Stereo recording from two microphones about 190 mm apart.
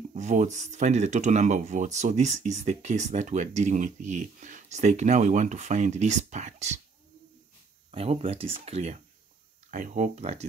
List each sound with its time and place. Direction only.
0.1 s speech: 40° right (ahead or behind)
7.9 s speech: 30° right (ahead or behind)